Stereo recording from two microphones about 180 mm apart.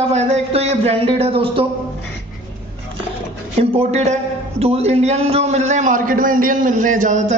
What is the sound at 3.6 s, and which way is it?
Speech, 35° right (ahead or behind).